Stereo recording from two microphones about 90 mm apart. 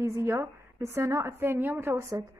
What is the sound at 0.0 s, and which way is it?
A woman's voice, 30° right (ahead or behind).